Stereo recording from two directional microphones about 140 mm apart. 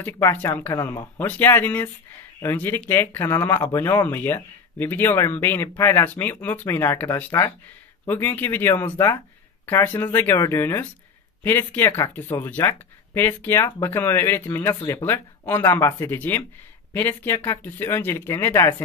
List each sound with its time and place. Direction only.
0.0 s speech: 15° left (ahead or behind)